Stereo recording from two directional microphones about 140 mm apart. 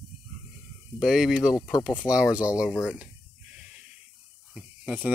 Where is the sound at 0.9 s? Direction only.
5° right (ahead or behind).